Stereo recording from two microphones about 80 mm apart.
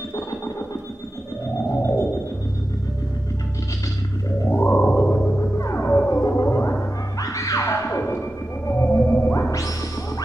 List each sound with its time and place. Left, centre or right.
1.7 s whale vocalization: left
4.5 s frog: left
5.6 s music: left
8.6 s whale vocalization: left
9.5 s smash: left